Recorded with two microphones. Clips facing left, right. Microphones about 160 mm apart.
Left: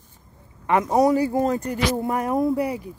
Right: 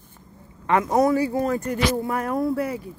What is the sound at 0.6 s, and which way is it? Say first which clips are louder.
Speech: left 1 dB; 15° left (ahead or behind).